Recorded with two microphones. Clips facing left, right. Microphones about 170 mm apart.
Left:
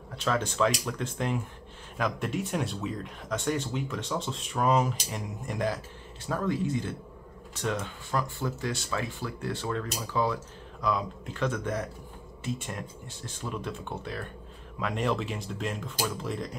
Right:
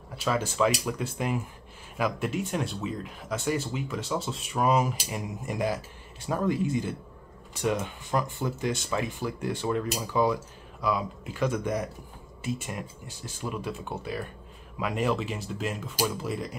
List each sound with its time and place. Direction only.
0.1 s speech: 5° right (ahead or behind)